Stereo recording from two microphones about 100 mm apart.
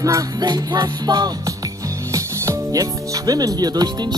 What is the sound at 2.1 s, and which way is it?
Speech, 35° right (ahead or behind).